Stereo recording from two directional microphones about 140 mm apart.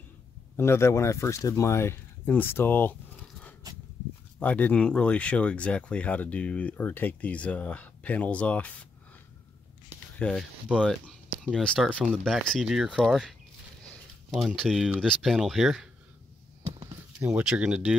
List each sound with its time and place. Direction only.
0.6 s speech: 20° left (ahead or behind)
10.1 s speech: 5° left (ahead or behind)
10.7 s speech: 5° right (ahead or behind)
17.2 s speech: 10° right (ahead or behind)